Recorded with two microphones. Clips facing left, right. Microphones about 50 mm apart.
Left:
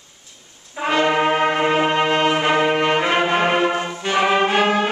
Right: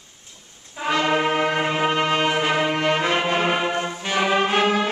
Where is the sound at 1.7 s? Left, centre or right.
Left.